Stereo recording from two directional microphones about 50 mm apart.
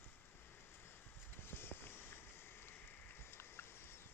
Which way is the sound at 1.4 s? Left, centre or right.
Left.